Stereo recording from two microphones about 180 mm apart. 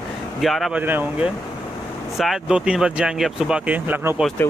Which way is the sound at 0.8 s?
10° right (ahead or behind).